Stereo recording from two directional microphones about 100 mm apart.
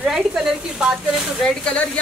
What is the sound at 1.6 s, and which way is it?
Speech, 15° left (ahead or behind).